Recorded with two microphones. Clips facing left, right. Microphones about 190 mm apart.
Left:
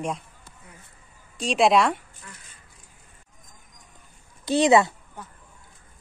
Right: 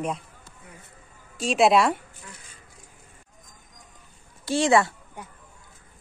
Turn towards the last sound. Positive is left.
turn(degrees=-10)  # may be behind; listen again after turning